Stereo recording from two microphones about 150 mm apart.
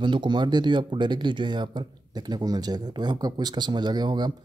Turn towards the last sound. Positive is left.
turn(degrees=-30)  # may be behind; listen again after turning